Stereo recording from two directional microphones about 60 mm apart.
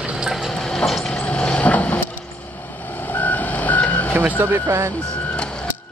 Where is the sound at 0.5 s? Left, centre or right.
Centre.